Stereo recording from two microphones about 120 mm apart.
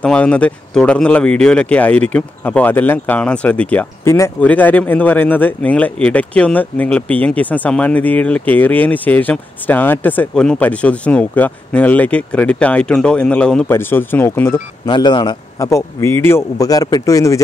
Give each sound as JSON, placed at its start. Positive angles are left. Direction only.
{"t": 0.0, "sound": "speech", "side_deg": 10}
{"t": 4.0, "sound": "speech", "side_deg": 20}
{"t": 14.9, "sound": "speech", "side_deg": 40}
{"t": 15.6, "sound": "speech", "side_deg": 25}